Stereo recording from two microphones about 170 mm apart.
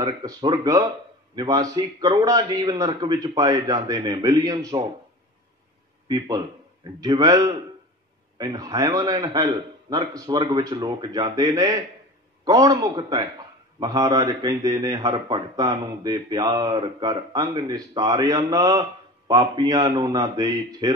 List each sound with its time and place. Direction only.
0.0 s a man's voice: 25° right (ahead or behind)
6.0 s a man's voice: 25° right (ahead or behind)